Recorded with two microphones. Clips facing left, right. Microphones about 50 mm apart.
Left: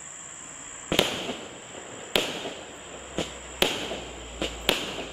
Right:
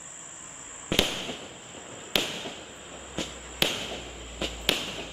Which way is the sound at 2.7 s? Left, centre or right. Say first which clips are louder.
Left 3 dB; centre.